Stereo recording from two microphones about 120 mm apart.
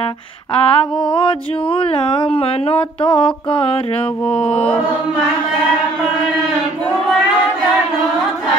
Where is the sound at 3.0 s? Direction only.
40° left (ahead or behind).